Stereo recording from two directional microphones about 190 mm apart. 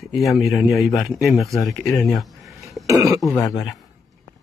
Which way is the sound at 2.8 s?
15° right (ahead or behind).